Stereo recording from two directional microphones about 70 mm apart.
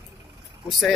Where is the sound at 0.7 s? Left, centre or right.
Centre.